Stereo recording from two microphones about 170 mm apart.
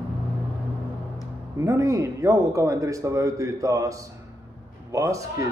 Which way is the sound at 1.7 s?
20° right (ahead or behind).